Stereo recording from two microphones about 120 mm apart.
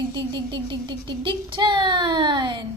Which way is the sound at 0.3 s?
40° right (ahead or behind).